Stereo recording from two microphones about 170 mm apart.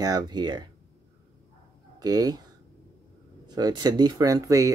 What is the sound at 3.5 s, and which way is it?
Speech, 25° right (ahead or behind).